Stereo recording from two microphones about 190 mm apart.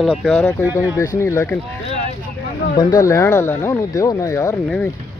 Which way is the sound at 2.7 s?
20° left (ahead or behind).